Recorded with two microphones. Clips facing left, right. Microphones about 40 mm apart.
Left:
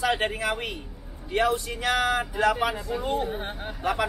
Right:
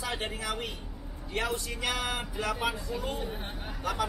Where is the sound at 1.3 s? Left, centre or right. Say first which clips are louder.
Left 8 dB; left.